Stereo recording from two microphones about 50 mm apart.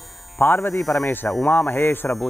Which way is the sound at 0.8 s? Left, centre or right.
Centre.